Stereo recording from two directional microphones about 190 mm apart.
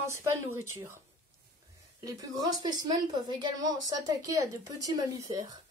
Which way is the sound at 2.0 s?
20° right (ahead or behind).